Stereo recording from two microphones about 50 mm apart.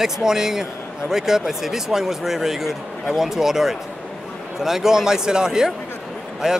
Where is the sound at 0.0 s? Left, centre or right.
Centre.